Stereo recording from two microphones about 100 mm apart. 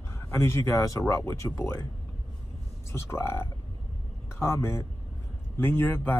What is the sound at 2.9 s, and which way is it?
Speech, 25° left (ahead or behind).